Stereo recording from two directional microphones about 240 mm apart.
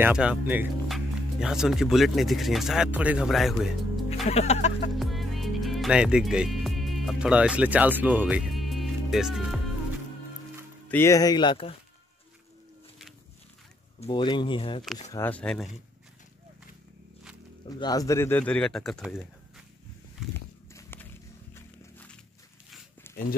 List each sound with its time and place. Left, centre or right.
0.0 s speech: centre
4.3 s speech: left
4.9 s music: centre
10.9 s speech: centre
13.9 s speech: left
15.1 s speech: centre
17.7 s speech: centre
20.3 s biting: centre
21.5 s walk: centre
23.0 s a sound: centre